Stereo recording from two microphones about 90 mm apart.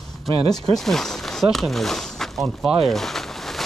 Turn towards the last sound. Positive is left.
turn(degrees=5)  # may be behind; listen again after turning